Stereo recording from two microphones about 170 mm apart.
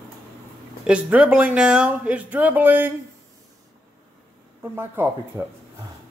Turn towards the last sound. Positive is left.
turn(degrees=-15)  # may be behind; listen again after turning